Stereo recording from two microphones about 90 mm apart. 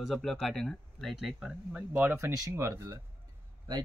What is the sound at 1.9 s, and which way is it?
Speech, 20° right (ahead or behind).